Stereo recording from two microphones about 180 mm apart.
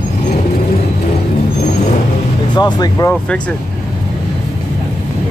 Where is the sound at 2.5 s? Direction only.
20° left (ahead or behind).